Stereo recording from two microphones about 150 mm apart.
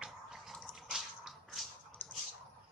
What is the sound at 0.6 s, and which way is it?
Squish, 5° right (ahead or behind).